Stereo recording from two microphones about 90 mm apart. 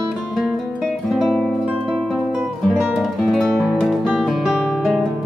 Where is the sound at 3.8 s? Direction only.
Centre (ahead or behind).